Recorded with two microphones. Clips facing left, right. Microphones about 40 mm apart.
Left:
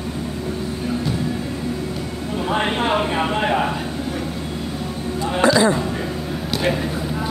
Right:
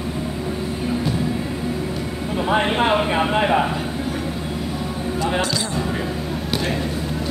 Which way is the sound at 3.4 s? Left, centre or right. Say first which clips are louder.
Right 2 dB; centre.